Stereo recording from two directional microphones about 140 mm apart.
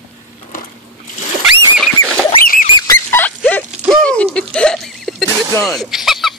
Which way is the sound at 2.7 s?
20° left (ahead or behind).